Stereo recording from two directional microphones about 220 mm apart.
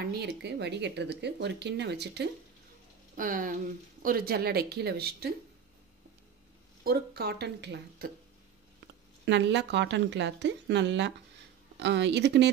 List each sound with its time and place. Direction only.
0.0 s speech: 50° right (ahead or behind)
3.2 s speech: 35° right (ahead or behind)
6.8 s speech: 45° right (ahead or behind)
9.2 s speech: 55° right (ahead or behind)